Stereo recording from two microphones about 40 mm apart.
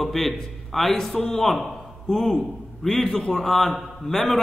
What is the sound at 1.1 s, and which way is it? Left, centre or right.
Speech, left.